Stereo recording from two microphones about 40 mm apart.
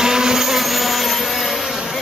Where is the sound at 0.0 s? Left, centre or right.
Centre.